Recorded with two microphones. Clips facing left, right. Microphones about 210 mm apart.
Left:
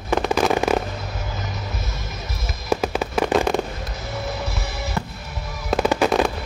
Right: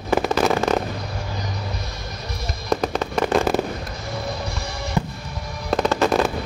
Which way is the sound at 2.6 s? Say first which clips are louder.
Even; 5° left (ahead or behind).